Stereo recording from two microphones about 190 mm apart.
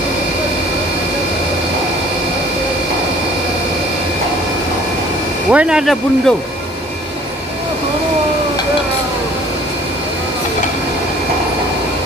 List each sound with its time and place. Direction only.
5.5 s speech: 5° right (ahead or behind)